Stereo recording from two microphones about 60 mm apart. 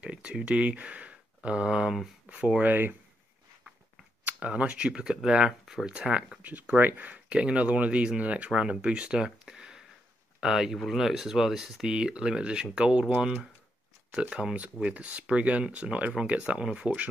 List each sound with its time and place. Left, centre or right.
0.0 s speech: centre
2.7 s speech: right
4.3 s speech: right; by 5.9 s centre
5.9 s speech: centre
6.4 s speech: right